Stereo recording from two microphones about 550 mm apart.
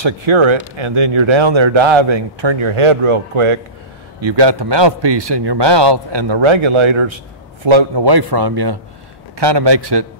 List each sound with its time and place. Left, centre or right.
0.0 s speech: right
4.2 s speech: right